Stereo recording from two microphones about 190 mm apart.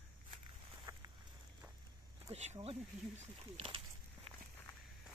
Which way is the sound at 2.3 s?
35° right (ahead or behind).